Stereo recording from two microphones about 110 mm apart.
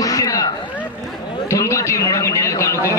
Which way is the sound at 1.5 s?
30° left (ahead or behind).